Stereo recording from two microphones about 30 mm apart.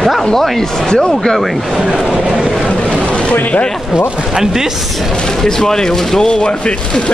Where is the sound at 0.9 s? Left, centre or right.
Left.